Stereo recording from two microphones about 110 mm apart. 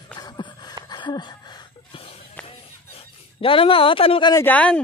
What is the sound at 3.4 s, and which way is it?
Speech, 55° left (ahead or behind).